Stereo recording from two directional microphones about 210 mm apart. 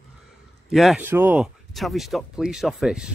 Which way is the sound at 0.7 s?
Centre (ahead or behind).